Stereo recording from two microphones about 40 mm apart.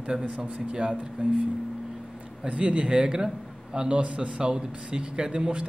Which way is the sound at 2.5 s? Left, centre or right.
Right.